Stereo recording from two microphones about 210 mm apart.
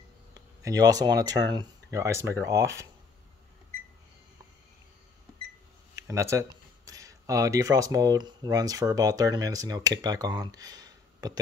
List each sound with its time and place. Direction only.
0.3 s speech: 15° right (ahead or behind)
6.0 s speech: 15° right (ahead or behind)